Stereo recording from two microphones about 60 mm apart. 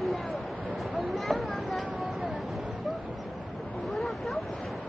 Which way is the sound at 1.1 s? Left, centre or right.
Centre.